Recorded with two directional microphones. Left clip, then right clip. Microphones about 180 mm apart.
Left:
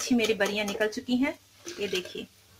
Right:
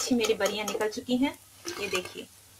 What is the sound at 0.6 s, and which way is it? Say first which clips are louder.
Speech: left 2 dB; 30° left (ahead or behind).